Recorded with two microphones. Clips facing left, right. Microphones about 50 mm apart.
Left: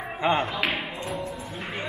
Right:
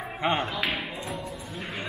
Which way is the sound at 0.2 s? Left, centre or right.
Left.